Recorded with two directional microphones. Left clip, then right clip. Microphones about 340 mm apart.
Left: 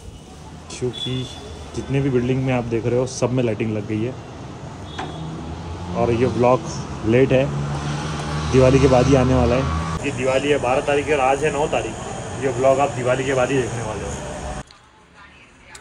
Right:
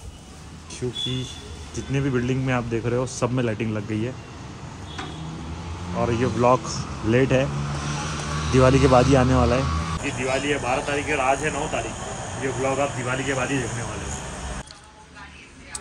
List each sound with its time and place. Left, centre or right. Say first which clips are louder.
0.7 s speech: left 2 dB; centre
5.9 s speech: left 4 dB; centre